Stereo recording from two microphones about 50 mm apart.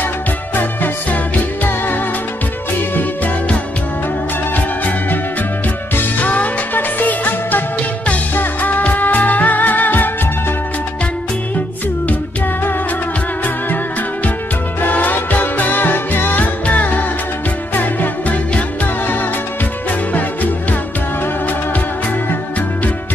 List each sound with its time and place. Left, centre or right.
1.1 s music: left
4.6 s music: left
14.8 s music: left